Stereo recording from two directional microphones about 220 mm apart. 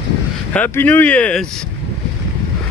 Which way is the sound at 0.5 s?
10° left (ahead or behind).